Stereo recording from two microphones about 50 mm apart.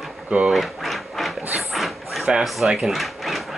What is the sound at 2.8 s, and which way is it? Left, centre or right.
Drawer open or close, centre.